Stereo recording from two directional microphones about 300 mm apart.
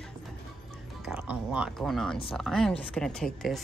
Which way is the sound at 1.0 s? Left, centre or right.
Centre.